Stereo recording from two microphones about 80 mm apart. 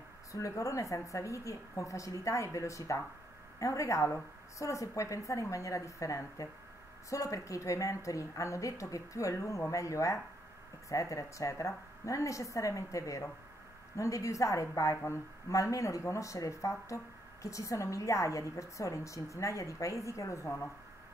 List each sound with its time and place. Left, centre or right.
0.3 s a woman's voice: left